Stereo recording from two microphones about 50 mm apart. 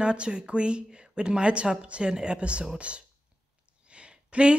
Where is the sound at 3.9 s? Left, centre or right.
Right.